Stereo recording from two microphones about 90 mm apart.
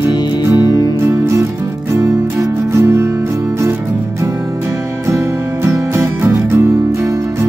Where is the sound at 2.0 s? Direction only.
35° right (ahead or behind).